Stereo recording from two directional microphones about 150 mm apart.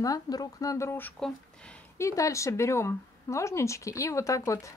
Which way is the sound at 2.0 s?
20° left (ahead or behind).